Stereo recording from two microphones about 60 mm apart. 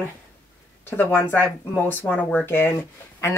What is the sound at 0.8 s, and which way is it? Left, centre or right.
Speech, left.